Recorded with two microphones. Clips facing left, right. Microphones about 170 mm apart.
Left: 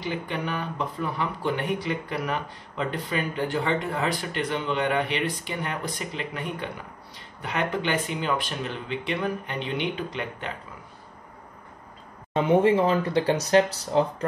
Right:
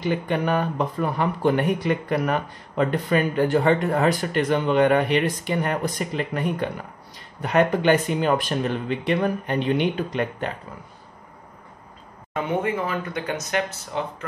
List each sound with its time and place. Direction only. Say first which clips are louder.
0.0 s speech: right 6 dB; 50° right (ahead or behind)
12.4 s speech: left 5 dB; 25° left (ahead or behind)